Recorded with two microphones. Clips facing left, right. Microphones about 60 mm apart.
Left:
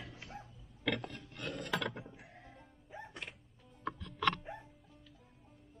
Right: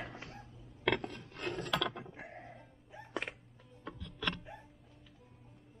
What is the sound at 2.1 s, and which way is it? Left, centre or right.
Music, right.